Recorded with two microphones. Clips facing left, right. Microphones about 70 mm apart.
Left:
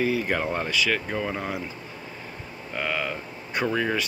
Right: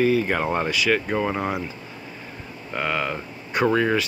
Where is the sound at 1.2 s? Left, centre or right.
Right.